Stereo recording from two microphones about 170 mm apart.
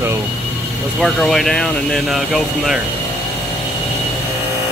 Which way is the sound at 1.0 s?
Centre (ahead or behind).